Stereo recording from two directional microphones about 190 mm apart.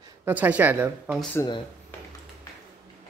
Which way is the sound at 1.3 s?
20° left (ahead or behind).